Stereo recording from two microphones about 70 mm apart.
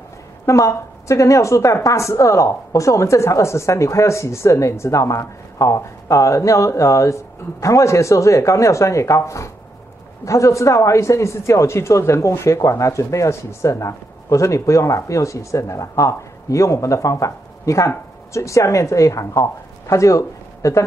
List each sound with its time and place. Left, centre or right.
0.5 s speech: left